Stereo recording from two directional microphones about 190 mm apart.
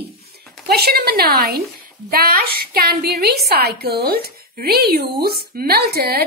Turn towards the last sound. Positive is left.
turn(degrees=-55)  # may be behind; listen again after turning